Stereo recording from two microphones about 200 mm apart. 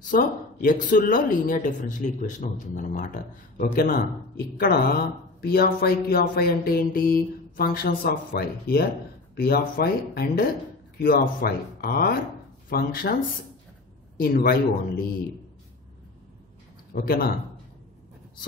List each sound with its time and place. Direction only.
0.1 s a woman's voice: 40° left (ahead or behind)
14.1 s speech: 50° left (ahead or behind)
16.9 s a woman's voice: 45° left (ahead or behind)